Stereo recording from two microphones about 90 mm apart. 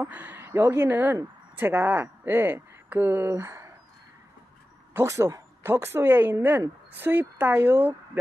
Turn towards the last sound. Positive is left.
turn(degrees=-20)  # may be behind; listen again after turning